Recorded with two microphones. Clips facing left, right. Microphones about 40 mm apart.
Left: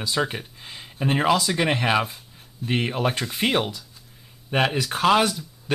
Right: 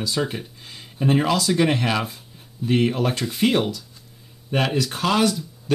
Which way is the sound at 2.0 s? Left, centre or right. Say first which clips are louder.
Right 3 dB; centre.